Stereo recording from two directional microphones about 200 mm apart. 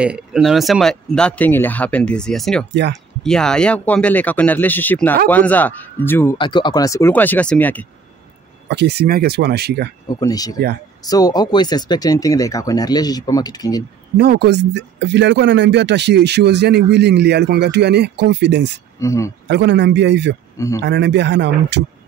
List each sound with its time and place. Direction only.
0.0 s speech: 5° right (ahead or behind)
2.7 s speech: 60° right (ahead or behind)
3.3 s speech: 5° left (ahead or behind)
6.3 s speech: 25° left (ahead or behind); by 7.8 s 10° left (ahead or behind)
8.6 s speech: 55° right (ahead or behind)
10.0 s speech: 20° left (ahead or behind)
14.1 s speech: 55° right (ahead or behind)
18.9 s speech: 15° left (ahead or behind)
19.4 s speech: 60° right (ahead or behind)
20.5 s speech: 15° left (ahead or behind)
20.8 s speech: 60° right (ahead or behind)